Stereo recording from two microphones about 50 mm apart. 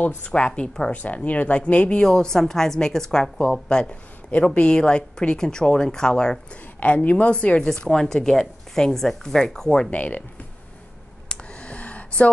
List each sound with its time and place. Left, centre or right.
0.2 s a woman's voice: centre
0.9 s a woman's voice: left; by 3.5 s centre
4.6 s speech: centre
6.8 s speech: left; by 9.7 s centre
9.8 s speech: left
11.2 s a sound: left